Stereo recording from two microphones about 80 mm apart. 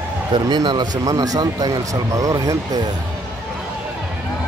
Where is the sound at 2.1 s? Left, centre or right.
Right.